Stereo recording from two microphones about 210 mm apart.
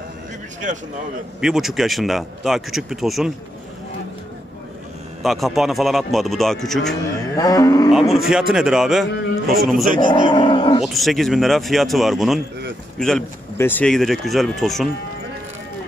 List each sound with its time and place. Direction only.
1.4 s speech: centre (ahead or behind)
5.2 s speech: centre (ahead or behind)
7.3 s livestock: 15° left (ahead or behind)
8.1 s speech: centre (ahead or behind)
9.9 s speech: 20° left (ahead or behind)
10.8 s speech: centre (ahead or behind)